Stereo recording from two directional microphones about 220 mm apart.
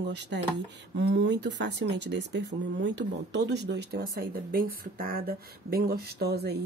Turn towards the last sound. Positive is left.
turn(degrees=-45)  # may be behind; listen again after turning